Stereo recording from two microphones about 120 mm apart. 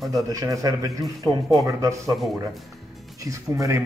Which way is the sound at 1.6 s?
30° right (ahead or behind).